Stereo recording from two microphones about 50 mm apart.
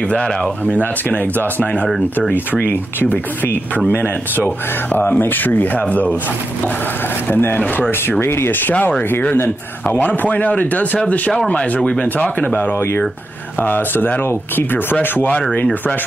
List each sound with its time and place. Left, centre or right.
0.1 s speech: left
2.3 s speech: left
5.9 s speech: left
7.2 s speech: left
8.7 s speech: left
11.3 s speech: centre
12.4 s speech: left